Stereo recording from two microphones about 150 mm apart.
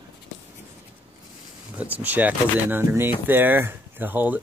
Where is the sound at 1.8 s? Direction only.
10° right (ahead or behind).